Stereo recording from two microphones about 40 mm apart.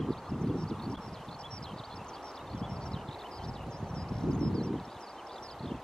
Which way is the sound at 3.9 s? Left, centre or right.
Left.